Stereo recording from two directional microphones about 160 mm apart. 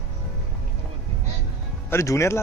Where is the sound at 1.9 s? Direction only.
20° left (ahead or behind).